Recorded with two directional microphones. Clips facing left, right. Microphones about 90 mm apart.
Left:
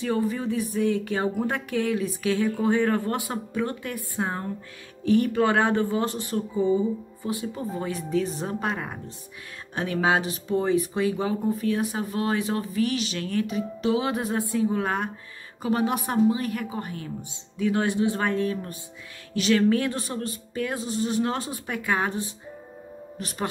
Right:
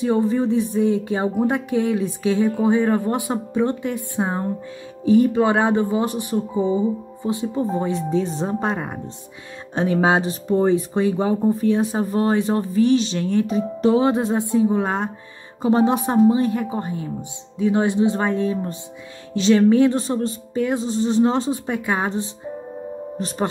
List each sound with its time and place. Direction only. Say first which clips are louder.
0.0 s speech: right 7 dB; 25° right (ahead or behind)